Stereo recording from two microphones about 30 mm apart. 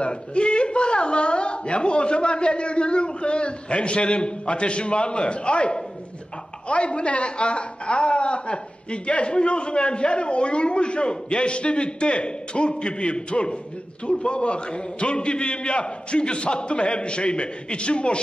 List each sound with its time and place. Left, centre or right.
0.0 s a man's voice: left
6.7 s a man's voice: left